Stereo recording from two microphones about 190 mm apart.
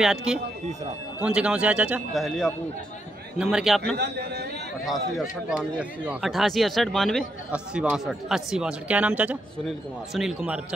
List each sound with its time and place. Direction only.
0.0 s speech: 5° right (ahead or behind)
3.9 s a man's voice: 60° right (ahead or behind)
4.8 s speech: centre (ahead or behind)